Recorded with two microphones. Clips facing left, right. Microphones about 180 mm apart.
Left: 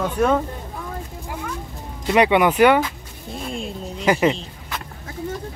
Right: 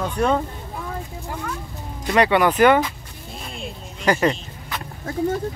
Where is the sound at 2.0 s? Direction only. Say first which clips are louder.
Left 1 dB; 15° left (ahead or behind).